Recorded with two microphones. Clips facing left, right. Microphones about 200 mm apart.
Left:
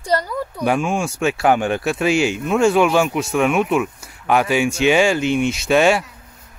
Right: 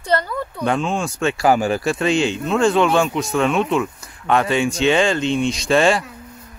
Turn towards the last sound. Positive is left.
turn(degrees=5)  # may be behind; listen again after turning